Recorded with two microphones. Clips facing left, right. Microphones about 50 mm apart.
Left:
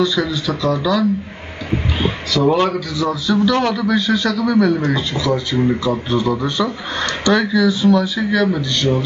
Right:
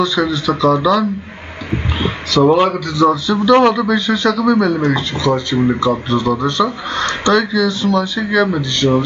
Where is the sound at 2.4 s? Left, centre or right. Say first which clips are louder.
Right 3 dB; centre.